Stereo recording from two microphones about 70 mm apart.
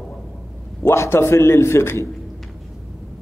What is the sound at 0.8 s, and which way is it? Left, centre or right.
A man's voice, left.